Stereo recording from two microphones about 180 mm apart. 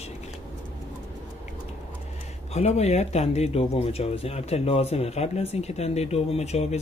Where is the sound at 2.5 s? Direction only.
35° left (ahead or behind).